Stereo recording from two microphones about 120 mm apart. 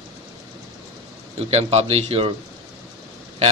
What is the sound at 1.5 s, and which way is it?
Speech, 60° right (ahead or behind).